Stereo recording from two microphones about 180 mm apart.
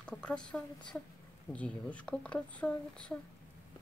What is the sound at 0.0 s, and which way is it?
Speech, 5° left (ahead or behind).